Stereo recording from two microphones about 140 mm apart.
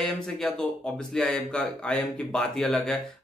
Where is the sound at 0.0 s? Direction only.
5° left (ahead or behind).